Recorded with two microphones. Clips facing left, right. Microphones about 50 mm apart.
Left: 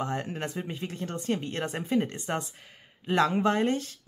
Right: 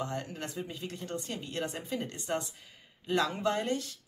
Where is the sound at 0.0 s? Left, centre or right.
Left.